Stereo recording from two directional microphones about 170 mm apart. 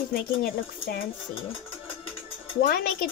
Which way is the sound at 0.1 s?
65° left (ahead or behind).